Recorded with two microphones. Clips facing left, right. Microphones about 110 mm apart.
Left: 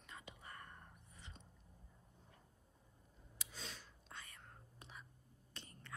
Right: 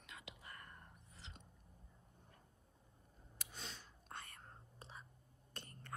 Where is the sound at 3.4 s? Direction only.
50° right (ahead or behind).